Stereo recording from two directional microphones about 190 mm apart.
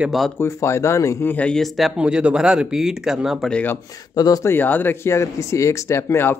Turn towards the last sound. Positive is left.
turn(degrees=15)  # may be behind; listen again after turning